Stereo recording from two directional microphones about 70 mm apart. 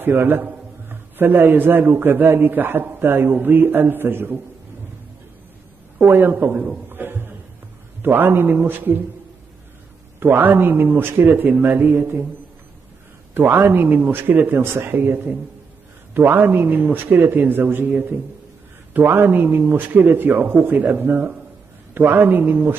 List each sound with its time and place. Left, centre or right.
0.0 s a man's voice: right
6.0 s a man's voice: right
6.9 s a sound: right
8.0 s a man's voice: right
10.2 s a man's voice: right
13.3 s a man's voice: right
16.2 s a man's voice: right
19.0 s a man's voice: right